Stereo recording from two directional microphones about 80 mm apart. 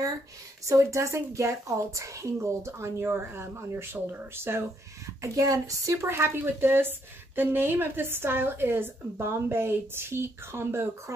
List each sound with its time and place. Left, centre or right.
0.7 s a woman's voice: right